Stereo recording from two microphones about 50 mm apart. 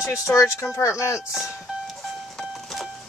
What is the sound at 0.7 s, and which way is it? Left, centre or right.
Speech, left.